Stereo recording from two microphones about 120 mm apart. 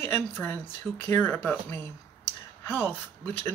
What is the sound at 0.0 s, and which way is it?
Speech, 15° left (ahead or behind).